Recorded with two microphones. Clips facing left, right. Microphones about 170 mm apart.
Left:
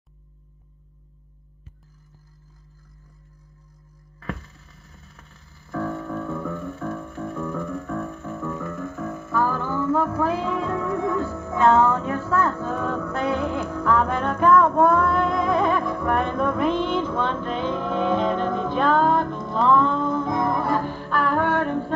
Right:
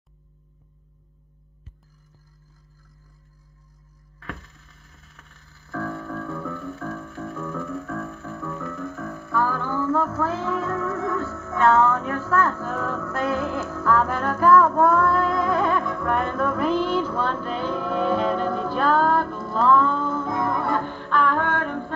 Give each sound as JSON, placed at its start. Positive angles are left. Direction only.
{"t": 5.7, "sound": "keyboard", "side_deg": 0}
{"t": 6.2, "sound": "music", "side_deg": 5}
{"t": 12.3, "sound": "a sound", "side_deg": 15}
{"t": 13.7, "sound": "music", "side_deg": 15}
{"t": 14.2, "sound": "music", "side_deg": -5}
{"t": 15.0, "sound": "music", "side_deg": 25}
{"t": 15.5, "sound": "music", "side_deg": 0}